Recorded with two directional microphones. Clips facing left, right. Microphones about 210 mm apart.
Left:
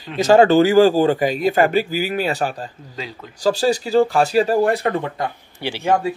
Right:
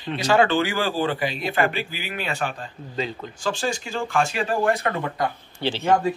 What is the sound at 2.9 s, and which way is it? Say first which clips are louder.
Speech: right 5 dB; 5° left (ahead or behind).